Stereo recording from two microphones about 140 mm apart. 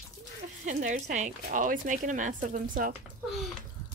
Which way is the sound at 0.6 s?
60° right (ahead or behind).